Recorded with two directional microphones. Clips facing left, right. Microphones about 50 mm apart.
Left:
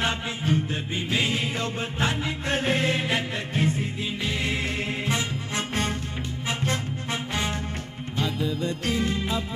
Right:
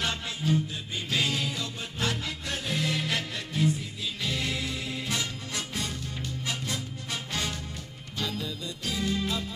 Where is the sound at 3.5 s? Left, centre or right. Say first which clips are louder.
Left 1 dB; left.